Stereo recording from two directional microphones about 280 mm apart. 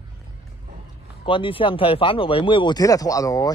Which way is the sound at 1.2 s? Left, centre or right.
Centre.